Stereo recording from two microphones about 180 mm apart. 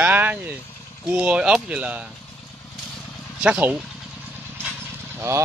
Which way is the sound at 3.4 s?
5° right (ahead or behind).